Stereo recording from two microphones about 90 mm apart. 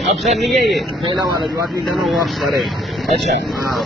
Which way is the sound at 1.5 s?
35° right (ahead or behind).